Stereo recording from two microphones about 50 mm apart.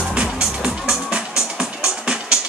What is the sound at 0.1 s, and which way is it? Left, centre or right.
Music, centre.